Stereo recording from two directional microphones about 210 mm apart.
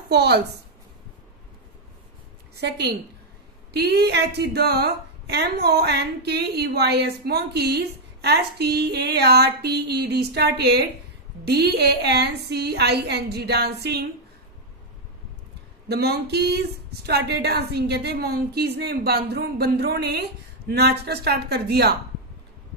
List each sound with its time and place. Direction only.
0.1 s a woman's voice: 50° right (ahead or behind)
2.5 s a woman's voice: 50° right (ahead or behind)
15.9 s a woman's voice: 50° right (ahead or behind)